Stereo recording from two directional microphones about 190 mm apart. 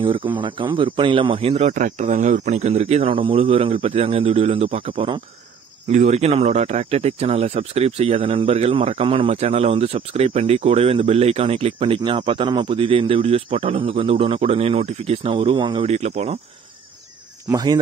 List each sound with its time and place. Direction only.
0.0 s speech: 25° right (ahead or behind)
5.9 s speech: 40° right (ahead or behind)
17.5 s speech: 20° right (ahead or behind)